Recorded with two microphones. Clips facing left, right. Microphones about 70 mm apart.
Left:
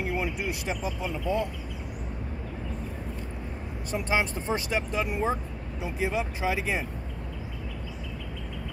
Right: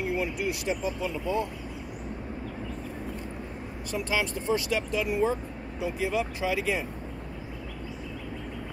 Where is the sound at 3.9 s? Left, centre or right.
Left.